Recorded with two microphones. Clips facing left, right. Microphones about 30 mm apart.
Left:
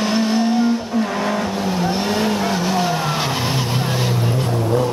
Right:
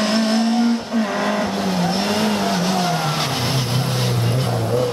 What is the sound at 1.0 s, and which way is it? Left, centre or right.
Vehicle, centre.